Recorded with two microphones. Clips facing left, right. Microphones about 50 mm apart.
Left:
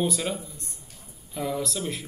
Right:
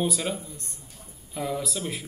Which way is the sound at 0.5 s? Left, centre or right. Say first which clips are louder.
Right 2 dB; right.